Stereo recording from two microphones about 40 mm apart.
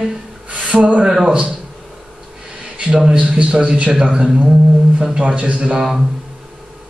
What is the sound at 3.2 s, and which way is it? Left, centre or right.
A man's voice, right.